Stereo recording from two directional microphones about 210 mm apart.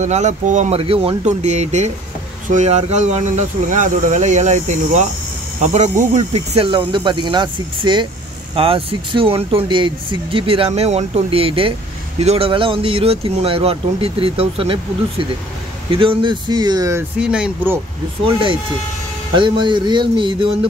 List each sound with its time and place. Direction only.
0.0 s speech: 35° right (ahead or behind); by 17.0 s 15° right (ahead or behind)
17.2 s speech: 5° right (ahead or behind)
18.2 s speech: 25° right (ahead or behind)